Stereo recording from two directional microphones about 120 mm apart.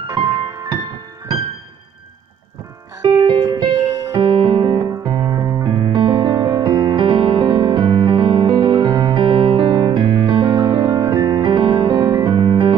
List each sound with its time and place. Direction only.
0.0 s piano: 30° right (ahead or behind)
3.2 s music: 30° right (ahead or behind)
4.2 s electric piano: 40° right (ahead or behind)